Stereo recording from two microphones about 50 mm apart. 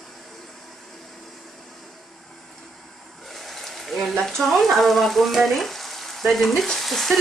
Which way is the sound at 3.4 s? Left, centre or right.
Centre.